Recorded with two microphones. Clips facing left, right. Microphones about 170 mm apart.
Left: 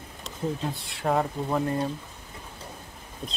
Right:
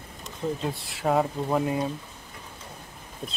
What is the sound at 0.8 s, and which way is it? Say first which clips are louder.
Speech: right 2 dB; centre (ahead or behind).